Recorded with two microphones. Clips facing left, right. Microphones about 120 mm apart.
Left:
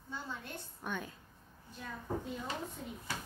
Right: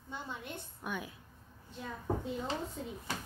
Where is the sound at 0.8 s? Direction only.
10° right (ahead or behind).